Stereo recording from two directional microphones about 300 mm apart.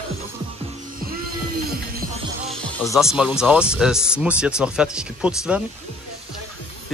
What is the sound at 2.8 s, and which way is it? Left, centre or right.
Speech, centre.